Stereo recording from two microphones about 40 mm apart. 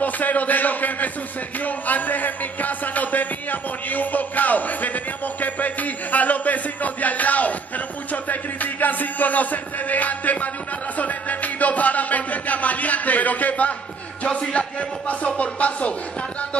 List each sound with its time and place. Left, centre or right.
0.0 s a man's voice: left
1.6 s music: left
14.2 s a man's voice: left